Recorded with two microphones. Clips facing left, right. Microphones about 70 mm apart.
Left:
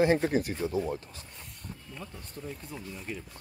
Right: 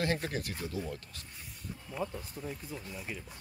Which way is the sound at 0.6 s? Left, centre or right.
Left.